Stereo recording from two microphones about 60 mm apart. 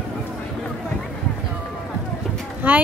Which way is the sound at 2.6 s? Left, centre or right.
Right.